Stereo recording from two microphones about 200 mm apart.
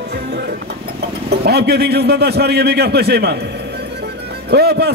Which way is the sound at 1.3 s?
55° right (ahead or behind).